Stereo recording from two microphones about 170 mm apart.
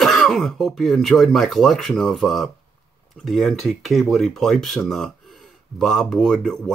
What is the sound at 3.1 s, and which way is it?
Speech, centre (ahead or behind).